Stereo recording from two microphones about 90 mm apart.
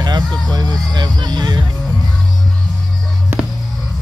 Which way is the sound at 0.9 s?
50° right (ahead or behind).